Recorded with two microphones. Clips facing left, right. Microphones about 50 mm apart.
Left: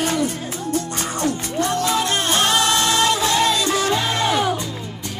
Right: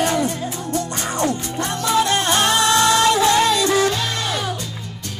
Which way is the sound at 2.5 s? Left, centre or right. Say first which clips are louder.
Right 4 dB; right.